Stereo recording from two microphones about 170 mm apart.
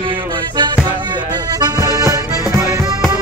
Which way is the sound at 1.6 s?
20° right (ahead or behind).